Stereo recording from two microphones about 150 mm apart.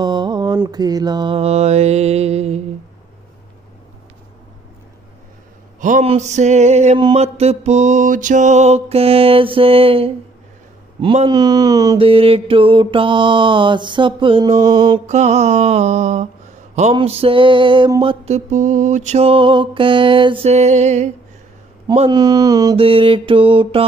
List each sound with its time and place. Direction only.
0.0 s mantra: 30° right (ahead or behind); by 2.6 s 45° right (ahead or behind)
5.8 s a sound: 60° right (ahead or behind)
6.0 s mantra: 50° right (ahead or behind)
11.0 s a sound: 35° right (ahead or behind)
12.0 s mantra: 40° right (ahead or behind)
15.0 s mantra: 45° right (ahead or behind)
18.0 s mantra: 45° right (ahead or behind)
22.1 s a sound: 25° right (ahead or behind)
22.8 s mantra: 35° right (ahead or behind)